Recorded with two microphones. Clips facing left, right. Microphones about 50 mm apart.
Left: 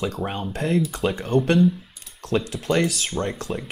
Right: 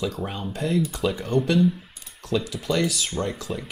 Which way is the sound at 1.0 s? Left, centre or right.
Left.